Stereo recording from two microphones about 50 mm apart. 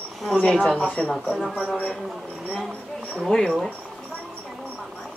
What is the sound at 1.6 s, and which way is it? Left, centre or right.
Speech, left.